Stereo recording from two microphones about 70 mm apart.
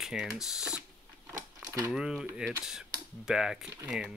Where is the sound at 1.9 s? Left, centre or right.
Centre.